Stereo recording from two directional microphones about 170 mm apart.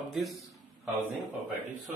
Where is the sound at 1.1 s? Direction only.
10° right (ahead or behind).